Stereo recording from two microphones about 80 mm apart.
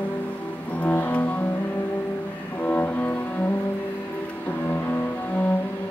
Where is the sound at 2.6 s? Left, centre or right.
Left.